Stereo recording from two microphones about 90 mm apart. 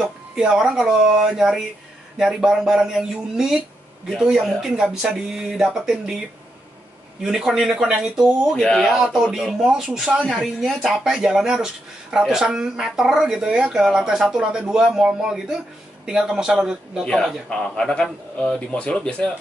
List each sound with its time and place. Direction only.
0.0 s speech: 5° right (ahead or behind)
8.5 s speech: 5° left (ahead or behind)
17.0 s a man's voice: 5° left (ahead or behind)